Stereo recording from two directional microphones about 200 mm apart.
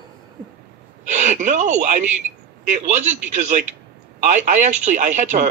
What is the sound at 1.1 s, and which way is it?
A man's voice, 35° right (ahead or behind).